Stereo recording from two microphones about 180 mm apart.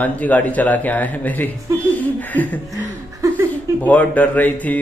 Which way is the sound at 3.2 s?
20° right (ahead or behind).